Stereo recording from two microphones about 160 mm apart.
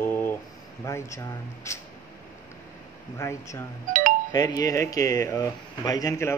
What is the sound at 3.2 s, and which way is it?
Speech, 20° left (ahead or behind).